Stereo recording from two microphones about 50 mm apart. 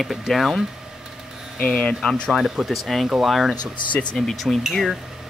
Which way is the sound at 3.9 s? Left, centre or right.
Left.